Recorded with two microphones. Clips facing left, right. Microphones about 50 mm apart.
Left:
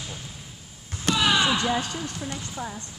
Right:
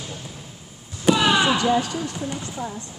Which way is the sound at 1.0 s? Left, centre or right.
Centre.